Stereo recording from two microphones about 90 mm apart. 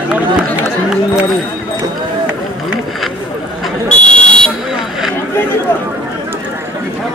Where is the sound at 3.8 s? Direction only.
10° left (ahead or behind).